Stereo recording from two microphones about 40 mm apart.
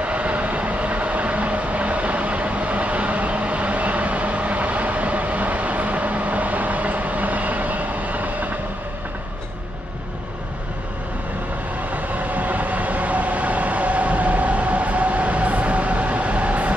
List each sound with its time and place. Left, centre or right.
0.0 s train: right
12.4 s train: right